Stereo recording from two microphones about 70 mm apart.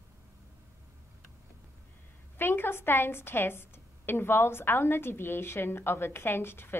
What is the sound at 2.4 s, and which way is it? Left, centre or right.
A woman's voice, left.